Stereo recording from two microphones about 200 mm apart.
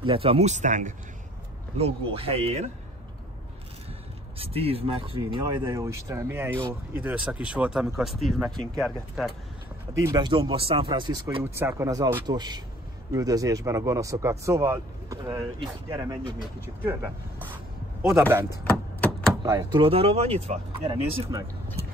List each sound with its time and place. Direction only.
0.0 s speech: 25° right (ahead or behind)
4.4 s speech: 30° right (ahead or behind)
5.5 s speech: 15° right (ahead or behind); by 9.3 s centre (ahead or behind)
9.9 s speech: 15° right (ahead or behind)
18.7 s typewriter: 5° left (ahead or behind)
19.4 s speech: 15° right (ahead or behind)
19.8 s speech: 30° right (ahead or behind)